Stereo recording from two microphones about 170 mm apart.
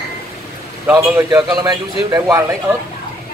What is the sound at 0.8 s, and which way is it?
A man's voice, 15° right (ahead or behind).